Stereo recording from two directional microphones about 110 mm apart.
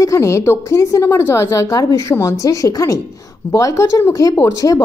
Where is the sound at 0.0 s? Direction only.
30° left (ahead or behind).